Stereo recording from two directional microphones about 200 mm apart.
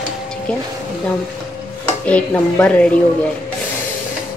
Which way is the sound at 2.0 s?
5° left (ahead or behind).